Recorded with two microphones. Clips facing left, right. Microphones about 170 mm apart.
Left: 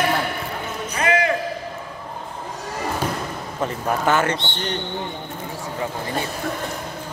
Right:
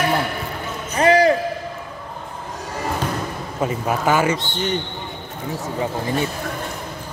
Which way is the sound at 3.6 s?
10° right (ahead or behind).